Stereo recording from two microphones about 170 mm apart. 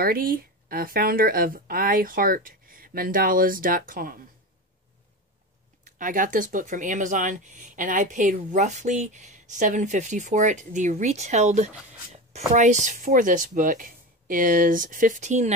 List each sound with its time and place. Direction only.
0.0 s speech: 60° right (ahead or behind)
5.9 s speech: 50° right (ahead or behind)